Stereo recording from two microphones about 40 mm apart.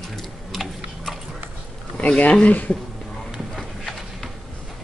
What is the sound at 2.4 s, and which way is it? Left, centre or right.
Speech, left.